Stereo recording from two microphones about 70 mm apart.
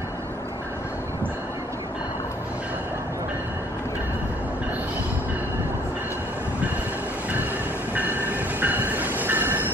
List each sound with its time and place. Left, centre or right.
7.9 s train: right